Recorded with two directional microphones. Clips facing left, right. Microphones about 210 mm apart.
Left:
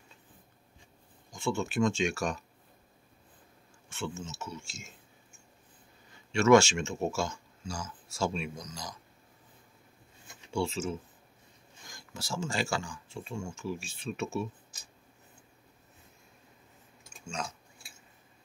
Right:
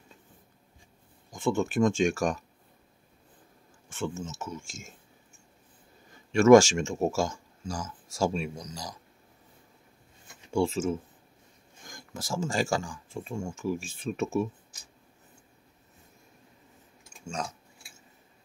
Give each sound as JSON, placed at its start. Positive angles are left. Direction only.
{"t": 1.3, "sound": "speech", "side_deg": -50}
{"t": 3.9, "sound": "speech", "side_deg": -50}
{"t": 6.3, "sound": "speech", "side_deg": -50}
{"t": 10.5, "sound": "speech", "side_deg": -50}